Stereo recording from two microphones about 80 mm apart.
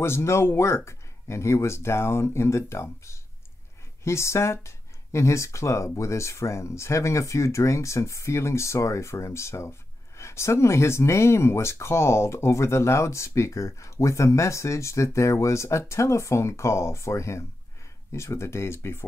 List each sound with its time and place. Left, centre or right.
0.0 s speech: left